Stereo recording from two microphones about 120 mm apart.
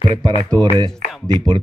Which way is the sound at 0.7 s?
35° right (ahead or behind).